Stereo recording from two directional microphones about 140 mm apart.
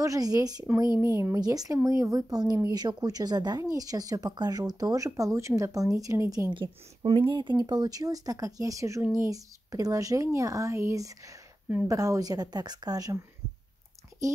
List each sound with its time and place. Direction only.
0.0 s speech: 25° right (ahead or behind)
6.5 s speech: 35° right (ahead or behind)